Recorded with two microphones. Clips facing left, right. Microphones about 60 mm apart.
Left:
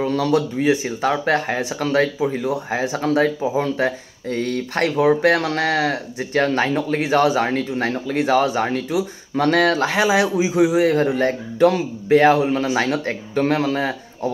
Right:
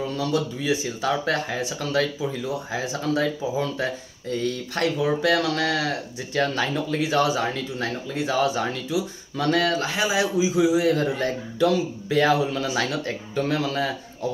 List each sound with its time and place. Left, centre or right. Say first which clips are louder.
0.0 s speech: left 6 dB; left
10.2 s speech: left 3 dB; left